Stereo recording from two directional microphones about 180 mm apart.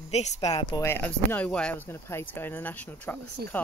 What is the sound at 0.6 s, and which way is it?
A woman's voice, 15° left (ahead or behind).